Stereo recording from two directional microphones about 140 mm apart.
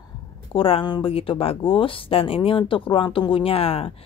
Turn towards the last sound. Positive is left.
turn(degrees=45)  # may be behind; listen again after turning